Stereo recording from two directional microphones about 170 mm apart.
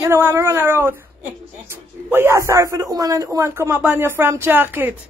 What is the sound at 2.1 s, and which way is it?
A man's voice, 15° right (ahead or behind).